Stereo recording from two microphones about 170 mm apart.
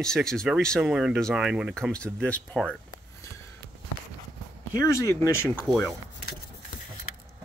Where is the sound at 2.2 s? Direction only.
5° left (ahead or behind).